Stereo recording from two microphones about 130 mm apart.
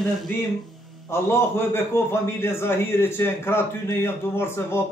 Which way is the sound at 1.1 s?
20° left (ahead or behind).